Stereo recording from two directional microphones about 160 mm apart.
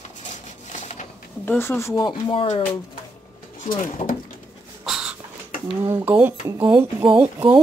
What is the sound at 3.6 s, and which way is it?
Speech, 50° left (ahead or behind).